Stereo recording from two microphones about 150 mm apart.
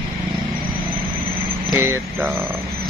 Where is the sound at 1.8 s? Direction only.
15° right (ahead or behind).